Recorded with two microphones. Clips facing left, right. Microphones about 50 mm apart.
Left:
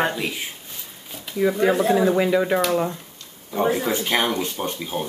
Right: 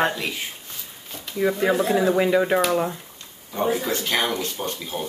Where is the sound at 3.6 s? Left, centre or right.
Left.